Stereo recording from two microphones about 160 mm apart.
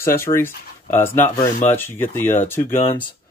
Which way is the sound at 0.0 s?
15° left (ahead or behind).